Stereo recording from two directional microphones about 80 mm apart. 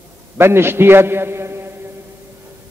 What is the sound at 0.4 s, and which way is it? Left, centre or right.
A man's voice, right.